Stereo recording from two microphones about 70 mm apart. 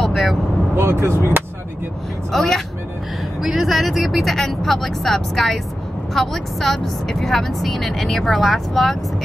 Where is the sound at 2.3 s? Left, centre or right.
Centre.